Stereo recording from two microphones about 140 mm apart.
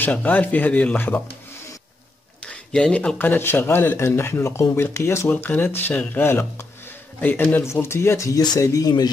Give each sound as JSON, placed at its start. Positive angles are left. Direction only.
{"t": 0.0, "sound": "speech", "side_deg": 10}
{"t": 2.4, "sound": "speech", "side_deg": 5}